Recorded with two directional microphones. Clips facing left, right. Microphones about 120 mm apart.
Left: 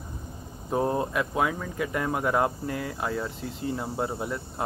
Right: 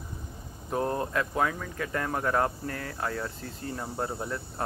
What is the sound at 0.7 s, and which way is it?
Speech, 20° left (ahead or behind).